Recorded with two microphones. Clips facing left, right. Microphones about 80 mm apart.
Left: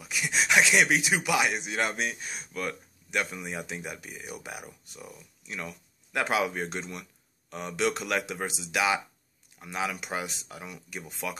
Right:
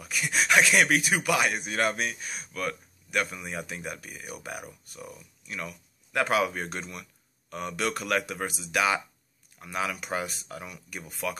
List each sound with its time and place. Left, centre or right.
0.0 s speech: centre